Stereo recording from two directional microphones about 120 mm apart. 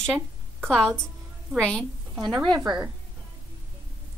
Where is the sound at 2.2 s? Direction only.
40° right (ahead or behind).